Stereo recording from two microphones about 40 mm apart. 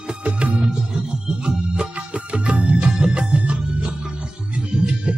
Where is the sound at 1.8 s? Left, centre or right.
Right.